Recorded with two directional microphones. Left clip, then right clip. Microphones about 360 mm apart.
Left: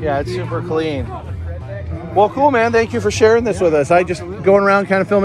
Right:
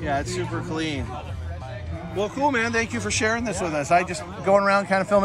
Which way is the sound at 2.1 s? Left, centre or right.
Centre.